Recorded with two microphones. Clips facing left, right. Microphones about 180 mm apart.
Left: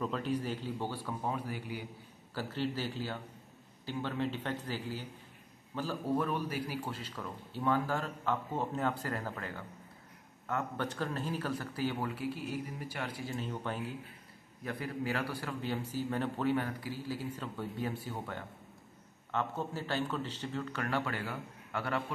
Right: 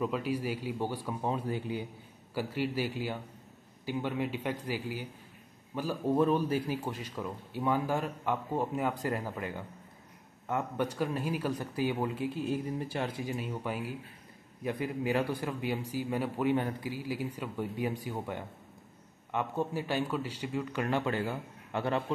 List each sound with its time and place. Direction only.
0.0 s a man's voice: 10° right (ahead or behind)
1.3 s a man's voice: 25° right (ahead or behind)
2.3 s a man's voice: 10° right (ahead or behind)
6.1 s a man's voice: 25° right (ahead or behind)